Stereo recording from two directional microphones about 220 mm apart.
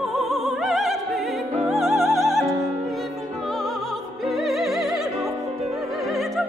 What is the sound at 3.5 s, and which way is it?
Music, centre (ahead or behind).